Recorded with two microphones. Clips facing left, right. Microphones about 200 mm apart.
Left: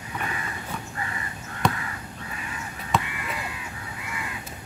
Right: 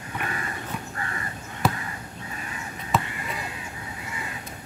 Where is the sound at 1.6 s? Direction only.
5° right (ahead or behind).